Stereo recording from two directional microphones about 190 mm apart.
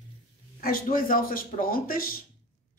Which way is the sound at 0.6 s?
50° left (ahead or behind).